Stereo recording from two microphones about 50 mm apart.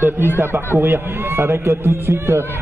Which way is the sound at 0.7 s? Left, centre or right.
Right.